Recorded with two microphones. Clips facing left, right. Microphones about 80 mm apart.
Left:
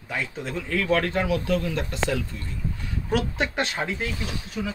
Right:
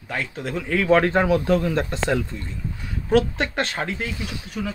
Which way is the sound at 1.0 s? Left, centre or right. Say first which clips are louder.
Right 6 dB; right.